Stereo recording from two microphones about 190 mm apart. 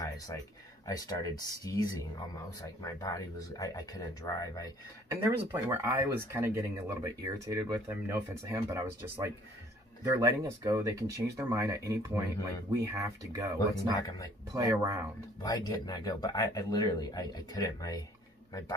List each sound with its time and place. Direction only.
0.8 s speech: 20° left (ahead or behind)
5.1 s speech: 15° right (ahead or behind)
13.6 s speech: 20° left (ahead or behind)
14.5 s speech: 15° right (ahead or behind)
15.4 s speech: 20° left (ahead or behind)